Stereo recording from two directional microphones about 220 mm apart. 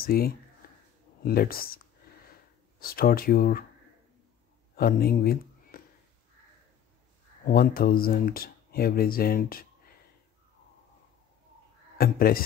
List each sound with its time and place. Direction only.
0.0 s speech: 40° left (ahead or behind)
0.6 s a sound: 40° left (ahead or behind)
1.2 s speech: 45° left (ahead or behind)
2.8 s speech: 40° left (ahead or behind)
4.7 s speech: 45° left (ahead or behind)
7.4 s speech: 40° left (ahead or behind)
12.0 s speech: 40° left (ahead or behind)